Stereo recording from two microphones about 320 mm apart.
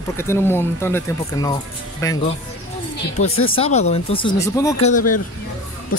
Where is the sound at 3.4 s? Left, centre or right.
Centre.